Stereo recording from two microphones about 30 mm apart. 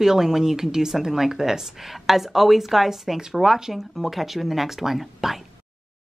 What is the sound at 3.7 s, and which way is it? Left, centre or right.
Speech, centre.